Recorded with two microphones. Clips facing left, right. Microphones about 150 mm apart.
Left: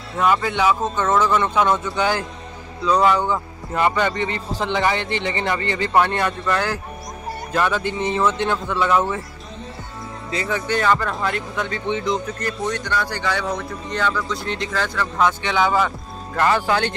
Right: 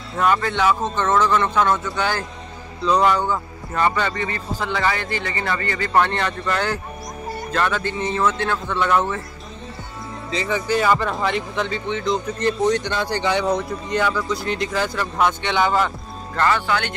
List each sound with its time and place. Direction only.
0.2 s speech: 5° left (ahead or behind)
2.8 s speech: centre (ahead or behind); by 5.9 s 20° left (ahead or behind)
5.9 s speech: 10° left (ahead or behind)
10.3 s speech: centre (ahead or behind)
12.4 s speech: 25° right (ahead or behind); by 15.9 s centre (ahead or behind)
16.3 s speech: 10° left (ahead or behind)
16.6 s speech: 30° left (ahead or behind)